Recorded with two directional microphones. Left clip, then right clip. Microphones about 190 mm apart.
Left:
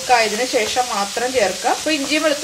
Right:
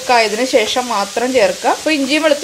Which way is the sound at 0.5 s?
50° right (ahead or behind).